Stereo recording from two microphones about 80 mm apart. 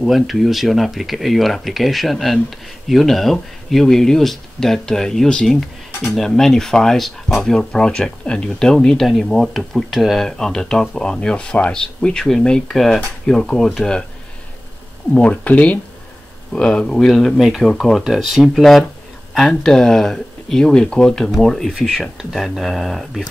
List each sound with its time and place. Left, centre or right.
0.0 s speech: centre
15.1 s speech: centre